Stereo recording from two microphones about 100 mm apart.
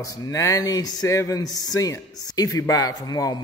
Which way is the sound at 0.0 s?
35° left (ahead or behind).